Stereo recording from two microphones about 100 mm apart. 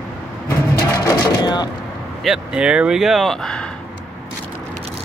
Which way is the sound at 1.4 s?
45° left (ahead or behind).